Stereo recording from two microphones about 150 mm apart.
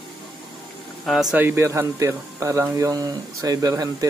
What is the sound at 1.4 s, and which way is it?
Speech, 15° right (ahead or behind).